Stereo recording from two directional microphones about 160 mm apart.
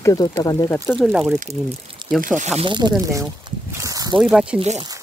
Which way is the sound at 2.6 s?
30° right (ahead or behind).